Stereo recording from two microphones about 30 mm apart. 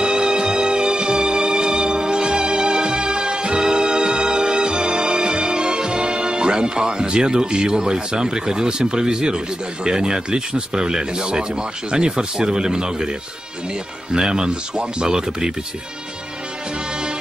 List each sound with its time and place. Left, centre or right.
0.0 s music: right
9.8 s speech: right
14.1 s speech: right